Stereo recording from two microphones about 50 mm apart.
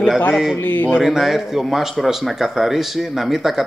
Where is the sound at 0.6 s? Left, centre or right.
Left.